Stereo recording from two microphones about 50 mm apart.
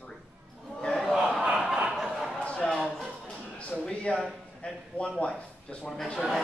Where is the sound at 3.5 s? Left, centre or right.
Left.